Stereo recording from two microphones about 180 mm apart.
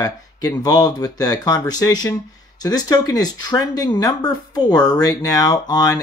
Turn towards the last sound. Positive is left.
turn(degrees=20)  # may be behind; listen again after turning